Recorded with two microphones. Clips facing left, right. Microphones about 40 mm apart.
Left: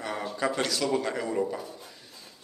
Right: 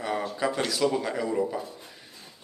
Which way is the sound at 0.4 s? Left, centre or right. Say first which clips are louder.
Right 1 dB; centre.